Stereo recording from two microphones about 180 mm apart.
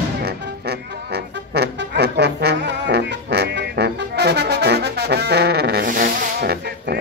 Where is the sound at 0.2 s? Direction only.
65° right (ahead or behind).